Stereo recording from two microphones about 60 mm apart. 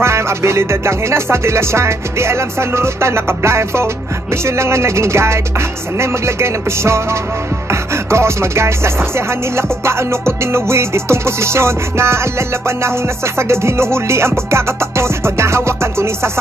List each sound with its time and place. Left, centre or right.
0.0 s music: right